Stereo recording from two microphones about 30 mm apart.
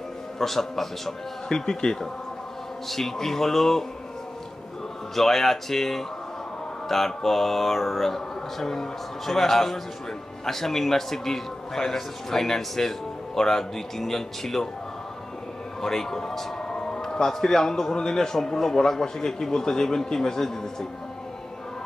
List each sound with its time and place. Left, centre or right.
0.4 s a man's voice: centre
1.5 s a man's voice: left
5.1 s a man's voice: centre
7.1 s a man's voice: centre
15.8 s a man's voice: centre
16.6 s a sound: left
17.3 s a man's voice: centre